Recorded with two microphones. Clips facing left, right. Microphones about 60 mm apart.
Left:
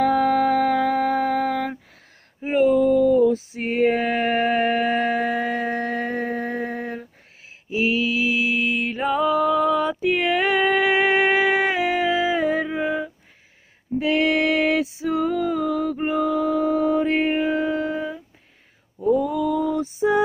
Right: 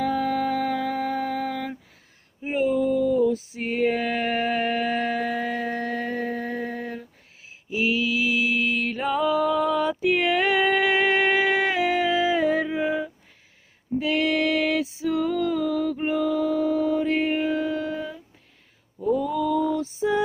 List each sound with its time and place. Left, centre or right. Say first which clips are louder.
0.0 s a sound: left 6 dB; left
2.4 s female singing: left 5 dB; left
8.6 s mantra: left 2 dB; centre
9.5 s music: left 3 dB; centre
13.9 s female singing: left 3 dB; left
15.4 s mantra: left 1 dB; centre
16.2 s music: left 3 dB; left
19.1 s male singing: even; left
20.0 s music: left 5 dB; left